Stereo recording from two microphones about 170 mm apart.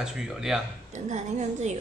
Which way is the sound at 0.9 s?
40° right (ahead or behind).